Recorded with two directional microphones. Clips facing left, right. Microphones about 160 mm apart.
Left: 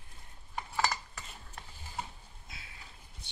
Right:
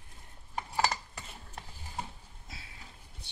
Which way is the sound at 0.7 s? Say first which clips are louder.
Right 2 dB; 35° right (ahead or behind).